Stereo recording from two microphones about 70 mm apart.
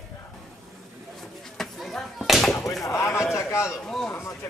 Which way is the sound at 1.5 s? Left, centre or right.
Centre.